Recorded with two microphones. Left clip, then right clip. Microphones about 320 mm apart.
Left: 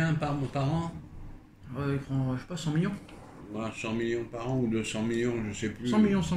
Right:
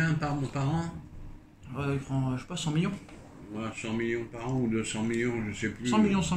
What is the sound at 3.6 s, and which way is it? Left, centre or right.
Speech, centre.